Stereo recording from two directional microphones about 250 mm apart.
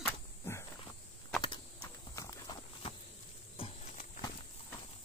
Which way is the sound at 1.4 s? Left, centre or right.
Centre.